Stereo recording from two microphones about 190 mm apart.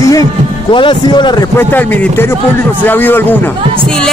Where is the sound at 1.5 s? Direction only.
10° left (ahead or behind).